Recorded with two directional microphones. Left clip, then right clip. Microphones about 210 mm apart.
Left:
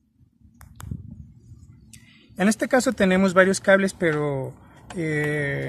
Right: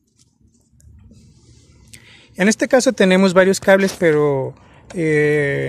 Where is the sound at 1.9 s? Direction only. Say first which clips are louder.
Right 8 dB; 25° right (ahead or behind).